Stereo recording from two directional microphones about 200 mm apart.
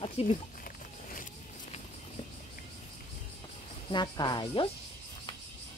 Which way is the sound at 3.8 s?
20° left (ahead or behind).